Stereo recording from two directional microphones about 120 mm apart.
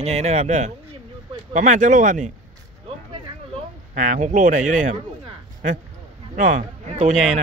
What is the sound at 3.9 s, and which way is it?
Speech, 90° right.